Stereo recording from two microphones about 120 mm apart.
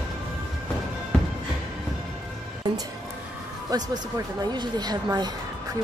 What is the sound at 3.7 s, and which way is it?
A woman's voice, 30° right (ahead or behind).